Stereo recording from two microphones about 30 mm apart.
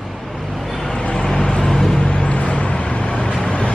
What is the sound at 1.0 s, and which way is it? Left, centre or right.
Vehicle, left.